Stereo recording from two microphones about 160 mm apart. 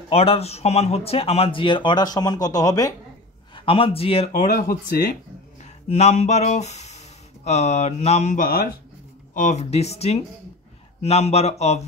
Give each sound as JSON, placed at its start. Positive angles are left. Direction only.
{"t": 0.1, "sound": "speech", "side_deg": 40}
{"t": 3.5, "sound": "a man's voice", "side_deg": 35}
{"t": 4.3, "sound": "speech", "side_deg": 65}
{"t": 5.6, "sound": "speech", "side_deg": 45}